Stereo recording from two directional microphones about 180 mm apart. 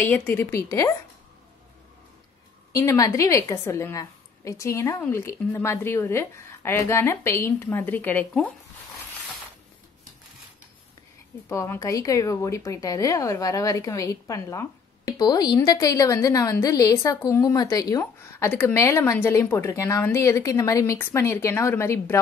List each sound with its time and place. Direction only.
0.0 s a woman's voice: 10° left (ahead or behind)
2.7 s a woman's voice: 20° left (ahead or behind)
11.4 s a woman's voice: 15° left (ahead or behind)